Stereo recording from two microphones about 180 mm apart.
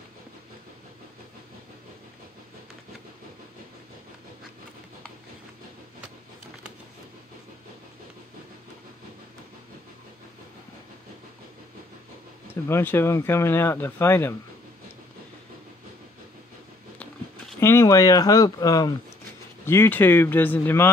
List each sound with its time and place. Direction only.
12.6 s speech: 15° left (ahead or behind)
17.6 s speech: 15° left (ahead or behind)